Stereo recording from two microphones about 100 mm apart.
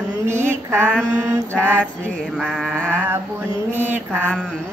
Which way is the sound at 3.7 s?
20° right (ahead or behind).